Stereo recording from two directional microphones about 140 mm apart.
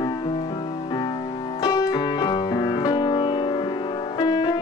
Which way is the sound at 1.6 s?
20° left (ahead or behind).